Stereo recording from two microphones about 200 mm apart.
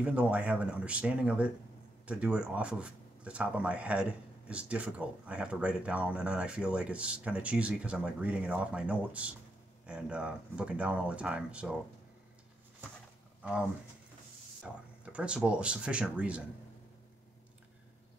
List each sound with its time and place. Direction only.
0.0 s speech: 5° right (ahead or behind)
13.4 s speech: 5° right (ahead or behind)